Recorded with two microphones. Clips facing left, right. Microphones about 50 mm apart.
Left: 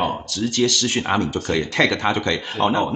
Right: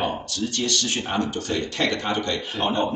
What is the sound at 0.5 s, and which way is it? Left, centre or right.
Speech, left.